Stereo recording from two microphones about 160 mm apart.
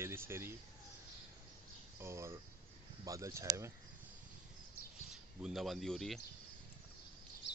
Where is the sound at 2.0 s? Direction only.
15° right (ahead or behind).